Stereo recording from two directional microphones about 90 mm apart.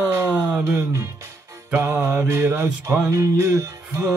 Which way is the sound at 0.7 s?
30° right (ahead or behind).